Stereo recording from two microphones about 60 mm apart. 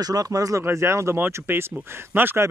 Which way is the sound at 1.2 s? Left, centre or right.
Right.